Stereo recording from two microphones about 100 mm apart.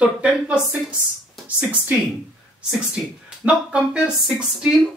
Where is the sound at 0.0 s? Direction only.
10° right (ahead or behind).